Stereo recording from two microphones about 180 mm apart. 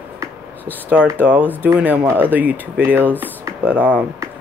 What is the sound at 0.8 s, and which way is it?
Speech, 10° right (ahead or behind).